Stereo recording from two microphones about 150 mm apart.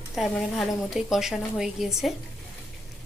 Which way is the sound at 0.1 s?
Centre (ahead or behind).